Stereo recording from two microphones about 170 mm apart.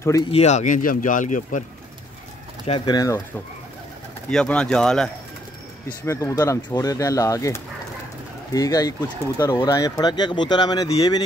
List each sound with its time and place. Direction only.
0.0 s speech: 20° left (ahead or behind)
0.3 s speech: 40° left (ahead or behind)
2.6 s speech: 30° left (ahead or behind)
4.3 s speech: 5° left (ahead or behind)
6.0 s speech: 15° left (ahead or behind)